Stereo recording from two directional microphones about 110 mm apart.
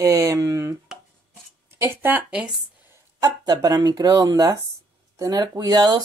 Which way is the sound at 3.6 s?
35° right (ahead or behind).